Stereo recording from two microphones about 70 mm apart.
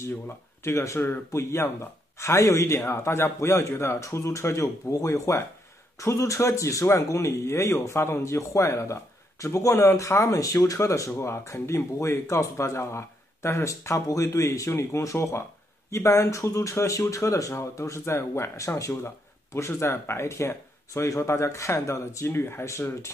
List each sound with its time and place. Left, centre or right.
0.7 s speech: left
14.7 s speech: left